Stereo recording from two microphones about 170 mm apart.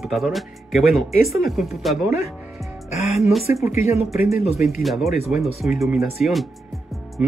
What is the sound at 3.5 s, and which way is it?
Speech, 15° right (ahead or behind).